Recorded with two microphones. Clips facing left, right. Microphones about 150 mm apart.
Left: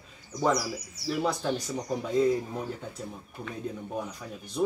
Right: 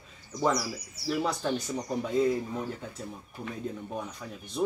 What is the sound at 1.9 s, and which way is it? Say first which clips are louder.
Speech: left 2 dB; centre (ahead or behind).